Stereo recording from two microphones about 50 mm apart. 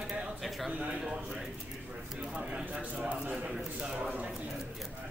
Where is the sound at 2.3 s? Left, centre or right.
Centre.